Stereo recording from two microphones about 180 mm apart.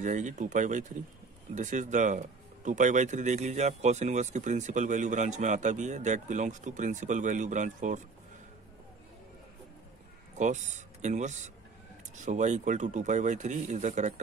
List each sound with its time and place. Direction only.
0.0 s speech: 45° right (ahead or behind)
10.3 s speech: 40° right (ahead or behind)